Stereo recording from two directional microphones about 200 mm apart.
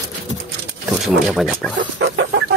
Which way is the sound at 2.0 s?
65° right (ahead or behind).